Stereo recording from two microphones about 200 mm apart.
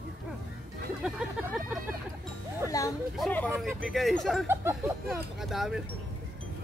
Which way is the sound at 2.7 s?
15° left (ahead or behind).